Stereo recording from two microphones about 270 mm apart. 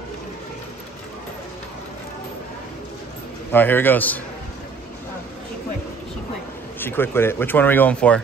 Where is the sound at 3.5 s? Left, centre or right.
Centre.